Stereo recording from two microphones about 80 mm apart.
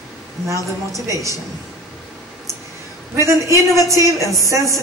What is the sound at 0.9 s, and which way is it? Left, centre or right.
Speech, right.